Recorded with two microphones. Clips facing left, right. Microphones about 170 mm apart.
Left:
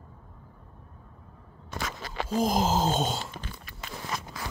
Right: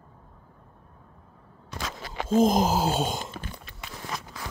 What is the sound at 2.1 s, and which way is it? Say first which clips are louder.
Speech: right 6 dB; 20° right (ahead or behind).